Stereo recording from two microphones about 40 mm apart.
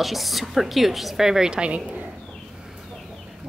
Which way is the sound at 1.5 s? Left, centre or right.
Right.